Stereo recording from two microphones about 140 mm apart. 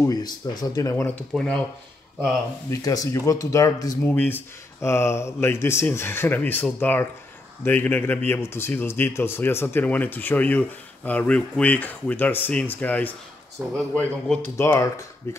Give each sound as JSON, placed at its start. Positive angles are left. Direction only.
{"t": 0.0, "sound": "speech", "side_deg": 25}
{"t": 1.3, "sound": "speech", "side_deg": 5}
{"t": 2.7, "sound": "speech", "side_deg": 25}
{"t": 4.0, "sound": "speech", "side_deg": 10}
{"t": 13.6, "sound": "speech", "side_deg": -15}
{"t": 13.9, "sound": "speech", "side_deg": 5}
{"t": 14.6, "sound": "speech", "side_deg": 20}